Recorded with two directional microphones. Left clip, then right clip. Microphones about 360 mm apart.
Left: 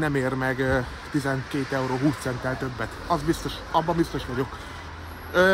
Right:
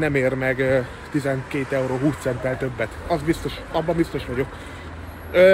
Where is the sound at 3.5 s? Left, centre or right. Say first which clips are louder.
Even; centre.